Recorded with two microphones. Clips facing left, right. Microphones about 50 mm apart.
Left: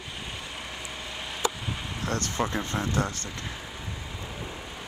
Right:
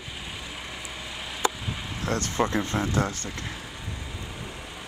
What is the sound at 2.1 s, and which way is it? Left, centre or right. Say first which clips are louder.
Speech: right 4 dB; right.